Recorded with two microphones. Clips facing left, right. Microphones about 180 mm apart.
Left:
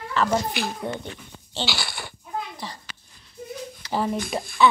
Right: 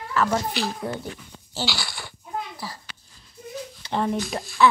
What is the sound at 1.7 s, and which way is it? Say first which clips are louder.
Goat: left 1 dB; 55° left (ahead or behind).